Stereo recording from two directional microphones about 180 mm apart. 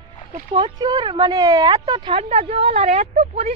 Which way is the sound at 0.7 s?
25° right (ahead or behind).